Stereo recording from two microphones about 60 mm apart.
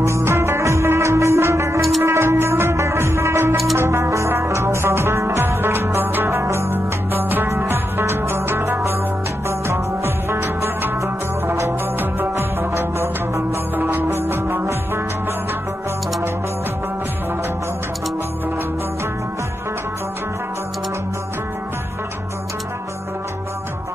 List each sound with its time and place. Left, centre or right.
0.0 s music: right
12.0 s music: right
12.7 s music: right
13.7 s music: right